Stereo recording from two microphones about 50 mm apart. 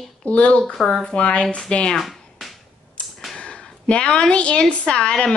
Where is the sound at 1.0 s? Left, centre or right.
Left.